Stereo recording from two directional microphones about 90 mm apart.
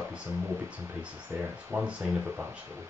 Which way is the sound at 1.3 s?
25° right (ahead or behind).